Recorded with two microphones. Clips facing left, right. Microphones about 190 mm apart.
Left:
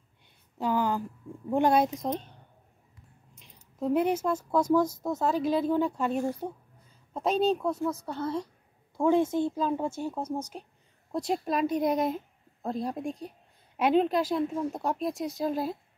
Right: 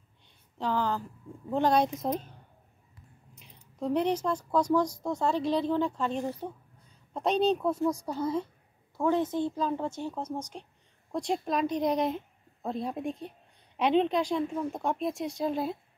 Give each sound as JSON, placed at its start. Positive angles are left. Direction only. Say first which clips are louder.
{"t": 0.6, "sound": "a sound", "louder": "left 2 dB", "side_deg": 10}
{"t": 1.5, "sound": "a woman's voice", "louder": "left 2 dB", "side_deg": 10}
{"t": 3.8, "sound": "a woman's voice", "louder": "left 2 dB", "side_deg": 5}
{"t": 8.9, "sound": "a woman's voice", "louder": "left 3 dB", "side_deg": 15}